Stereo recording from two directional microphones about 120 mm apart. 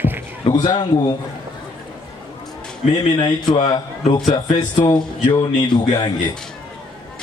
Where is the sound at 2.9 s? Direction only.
40° left (ahead or behind).